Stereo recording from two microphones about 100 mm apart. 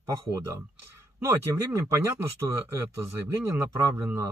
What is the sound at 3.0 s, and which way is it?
A man's voice, 25° right (ahead or behind).